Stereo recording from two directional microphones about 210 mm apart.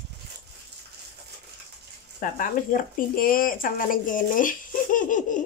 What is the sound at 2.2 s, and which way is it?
Speech, 40° left (ahead or behind).